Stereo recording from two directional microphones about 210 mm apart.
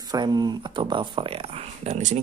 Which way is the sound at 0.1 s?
20° right (ahead or behind).